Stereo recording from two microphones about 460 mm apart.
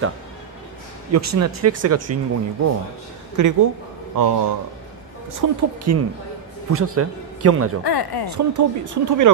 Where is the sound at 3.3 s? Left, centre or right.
Right.